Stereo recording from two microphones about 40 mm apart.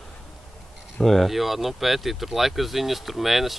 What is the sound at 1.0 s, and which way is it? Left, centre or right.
Speech, centre.